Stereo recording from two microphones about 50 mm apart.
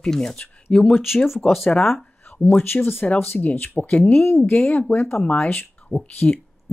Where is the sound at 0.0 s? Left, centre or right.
Centre.